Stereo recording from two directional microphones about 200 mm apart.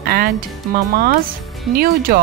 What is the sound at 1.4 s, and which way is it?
Music, centre (ahead or behind).